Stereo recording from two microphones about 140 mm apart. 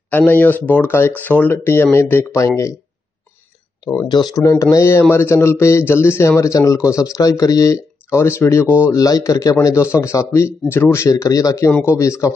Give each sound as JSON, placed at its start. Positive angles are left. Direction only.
{"t": 0.1, "sound": "speech", "side_deg": 10}
{"t": 4.1, "sound": "speech", "side_deg": 30}